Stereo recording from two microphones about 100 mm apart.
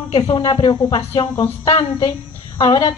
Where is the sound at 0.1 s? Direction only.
60° left (ahead or behind).